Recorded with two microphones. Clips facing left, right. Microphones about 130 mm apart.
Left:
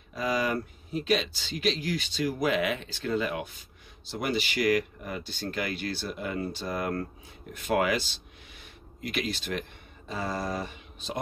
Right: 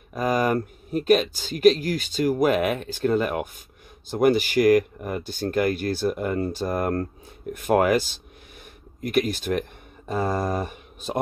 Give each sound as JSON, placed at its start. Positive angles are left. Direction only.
{"t": 0.1, "sound": "speech", "side_deg": -50}